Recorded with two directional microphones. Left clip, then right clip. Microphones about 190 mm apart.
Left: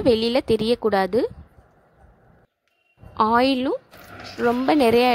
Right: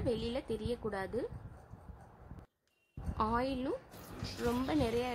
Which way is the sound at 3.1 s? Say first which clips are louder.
Left 16 dB; 40° left (ahead or behind).